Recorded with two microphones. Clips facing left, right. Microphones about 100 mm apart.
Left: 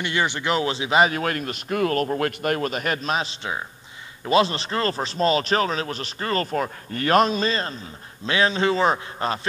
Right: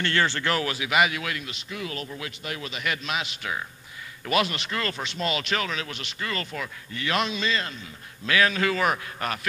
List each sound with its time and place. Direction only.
0.0 s a man's voice: 15° left (ahead or behind)